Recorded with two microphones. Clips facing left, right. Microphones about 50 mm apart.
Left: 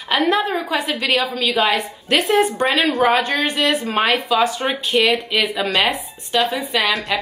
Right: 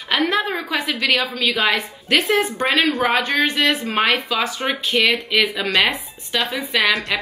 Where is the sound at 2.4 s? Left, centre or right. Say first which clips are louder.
Left 1 dB; left.